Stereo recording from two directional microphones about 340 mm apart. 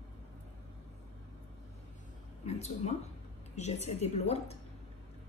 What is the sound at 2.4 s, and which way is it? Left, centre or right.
A woman's voice, centre.